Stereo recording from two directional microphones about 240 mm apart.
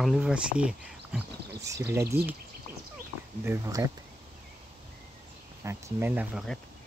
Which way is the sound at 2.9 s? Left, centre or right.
Centre.